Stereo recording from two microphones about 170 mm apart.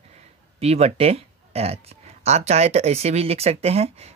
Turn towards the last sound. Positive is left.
turn(degrees=-35)  # may be behind; listen again after turning